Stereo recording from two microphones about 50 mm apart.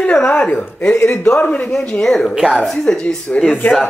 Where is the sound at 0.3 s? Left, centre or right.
Left.